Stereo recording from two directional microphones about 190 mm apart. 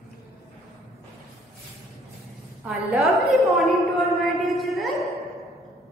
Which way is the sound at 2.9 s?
Centre (ahead or behind).